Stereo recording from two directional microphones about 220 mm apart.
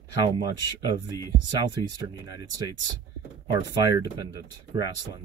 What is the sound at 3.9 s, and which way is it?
Speech, 15° right (ahead or behind).